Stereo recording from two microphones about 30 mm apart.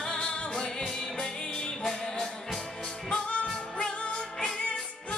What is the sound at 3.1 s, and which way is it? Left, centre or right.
Music, left.